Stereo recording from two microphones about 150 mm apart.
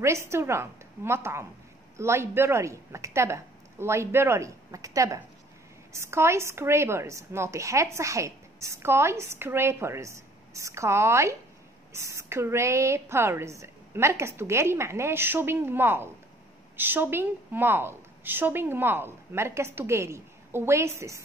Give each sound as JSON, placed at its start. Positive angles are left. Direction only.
{"t": 0.0, "sound": "a woman's voice", "side_deg": -20}